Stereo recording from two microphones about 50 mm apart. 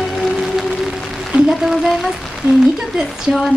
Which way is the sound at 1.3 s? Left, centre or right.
Centre.